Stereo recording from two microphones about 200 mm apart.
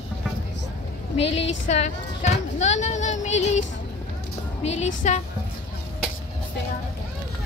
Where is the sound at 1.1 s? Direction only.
30° left (ahead or behind).